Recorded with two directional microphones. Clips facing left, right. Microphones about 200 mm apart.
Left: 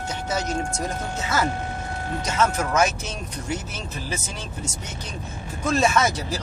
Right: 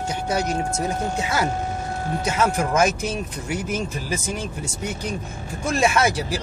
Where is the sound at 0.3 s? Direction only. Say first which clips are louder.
Right 2 dB; 10° right (ahead or behind).